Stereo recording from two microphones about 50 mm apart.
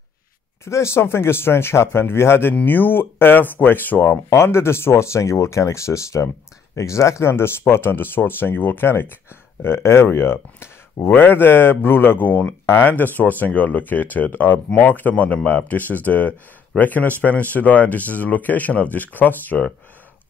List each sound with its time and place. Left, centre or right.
0.7 s speech: left
2.6 s speech: left
4.3 s speech: left
11.1 s speech: left